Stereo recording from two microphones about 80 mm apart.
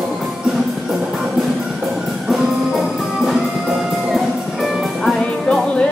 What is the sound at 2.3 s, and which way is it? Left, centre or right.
Music, centre.